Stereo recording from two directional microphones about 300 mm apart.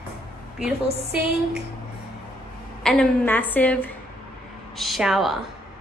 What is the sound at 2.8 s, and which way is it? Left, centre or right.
A woman's voice, centre.